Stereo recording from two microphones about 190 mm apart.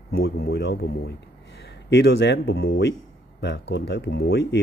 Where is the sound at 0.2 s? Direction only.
65° left (ahead or behind).